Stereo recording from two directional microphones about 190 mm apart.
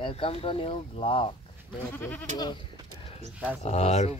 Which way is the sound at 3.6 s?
35° left (ahead or behind).